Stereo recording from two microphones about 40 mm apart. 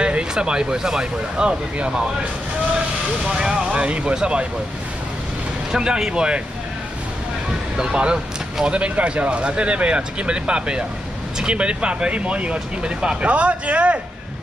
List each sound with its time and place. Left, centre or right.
0.0 s speech: right
3.3 s speech: right
5.7 s speech: centre
7.7 s speech: right